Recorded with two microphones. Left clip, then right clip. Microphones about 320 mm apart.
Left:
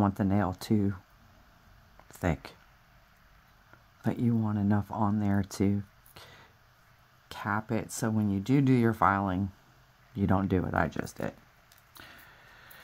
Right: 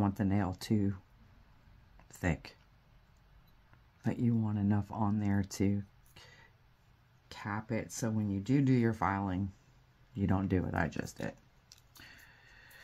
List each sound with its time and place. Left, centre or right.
0.0 s speech: centre
2.0 s speech: centre
4.0 s speech: centre
12.0 s a sound: centre